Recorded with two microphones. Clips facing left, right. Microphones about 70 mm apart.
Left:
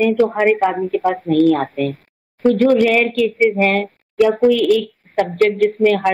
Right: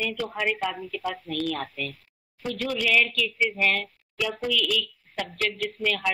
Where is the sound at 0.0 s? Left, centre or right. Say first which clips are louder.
Left 14 dB; left.